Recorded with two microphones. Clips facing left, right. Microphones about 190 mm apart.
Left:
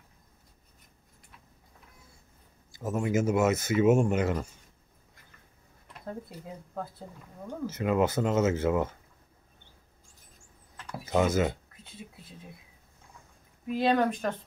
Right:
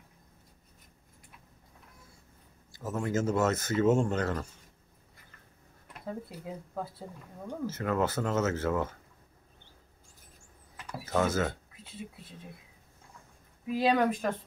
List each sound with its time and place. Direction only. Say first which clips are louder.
2.7 s speech: left 3 dB; 15° left (ahead or behind)
6.0 s speech: right 1 dB; centre (ahead or behind)
7.6 s speech: left 3 dB; 15° left (ahead or behind)
11.1 s speech: left 3 dB; 15° left (ahead or behind)
11.7 s speech: right 3 dB; centre (ahead or behind)
13.7 s speech: left 1 dB; centre (ahead or behind)